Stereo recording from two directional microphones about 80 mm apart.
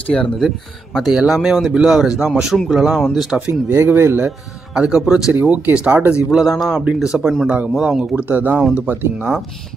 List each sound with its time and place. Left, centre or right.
0.1 s speech: centre
0.9 s speech: centre
3.3 s a man's voice: centre
3.7 s speech: right
4.7 s a man's voice: centre
5.3 s speech: right
6.4 s speech: centre
6.8 s a man's voice: centre
8.2 s speech: right